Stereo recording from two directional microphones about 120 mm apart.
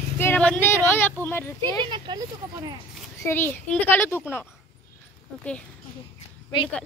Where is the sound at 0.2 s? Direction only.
15° left (ahead or behind).